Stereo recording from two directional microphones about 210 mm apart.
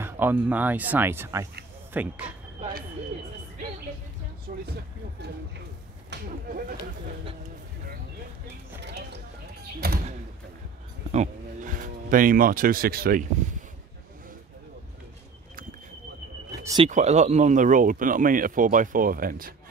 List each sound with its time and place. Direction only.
0.0 s speech: 10° right (ahead or behind)
4.5 s speech: 45° right (ahead or behind)
8.8 s clip-clop: 55° right (ahead or behind)
9.8 s speech: 45° right (ahead or behind)
11.1 s speech: 35° right (ahead or behind)
16.6 s speech: 25° right (ahead or behind)
16.9 s speech: 35° right (ahead or behind)